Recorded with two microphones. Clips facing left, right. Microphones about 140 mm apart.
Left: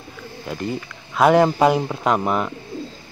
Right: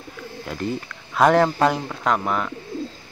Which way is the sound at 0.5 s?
Centre (ahead or behind).